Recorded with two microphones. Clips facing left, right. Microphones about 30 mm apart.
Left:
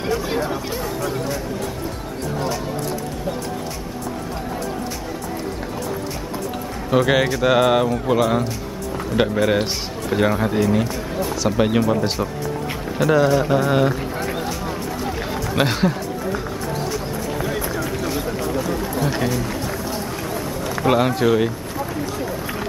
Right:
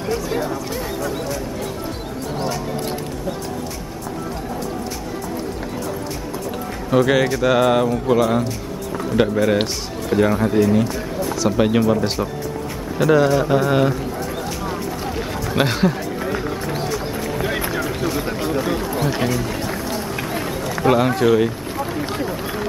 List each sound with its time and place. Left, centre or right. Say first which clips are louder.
6.9 s speech: right 1 dB; centre
15.0 s run: even; centre
17.4 s run: right 3 dB; right
19.1 s music: right 1 dB; centre
20.6 s run: right 1 dB; centre
21.2 s speech: right 2 dB; centre
21.7 s run: right 2 dB; centre